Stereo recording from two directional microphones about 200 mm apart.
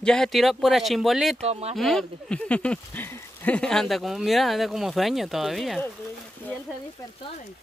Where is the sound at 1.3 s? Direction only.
30° right (ahead or behind).